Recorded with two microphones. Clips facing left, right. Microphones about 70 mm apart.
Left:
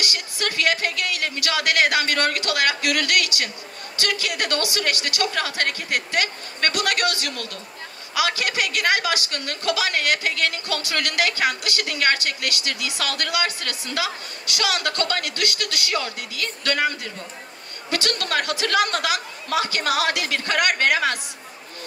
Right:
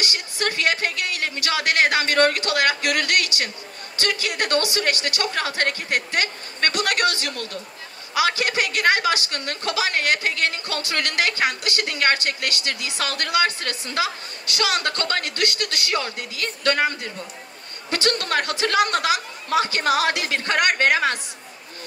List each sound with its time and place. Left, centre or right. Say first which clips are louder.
0.0 s a man's voice: right 2 dB; right